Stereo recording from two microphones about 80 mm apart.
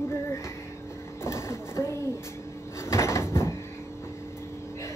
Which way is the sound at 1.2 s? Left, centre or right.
Left.